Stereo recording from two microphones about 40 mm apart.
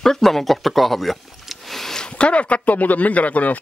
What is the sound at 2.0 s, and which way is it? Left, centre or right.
Speech, left.